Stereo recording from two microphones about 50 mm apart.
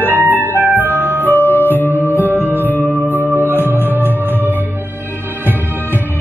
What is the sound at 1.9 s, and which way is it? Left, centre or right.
Music, right.